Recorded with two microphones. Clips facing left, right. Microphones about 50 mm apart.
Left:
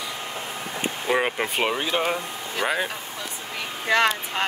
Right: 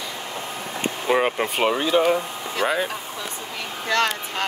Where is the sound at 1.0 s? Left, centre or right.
Centre.